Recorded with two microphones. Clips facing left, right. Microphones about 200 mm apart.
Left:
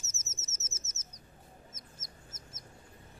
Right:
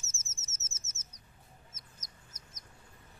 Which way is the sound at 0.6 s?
30° right (ahead or behind).